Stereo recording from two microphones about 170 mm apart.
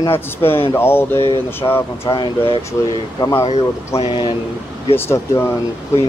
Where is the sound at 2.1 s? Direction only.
30° left (ahead or behind).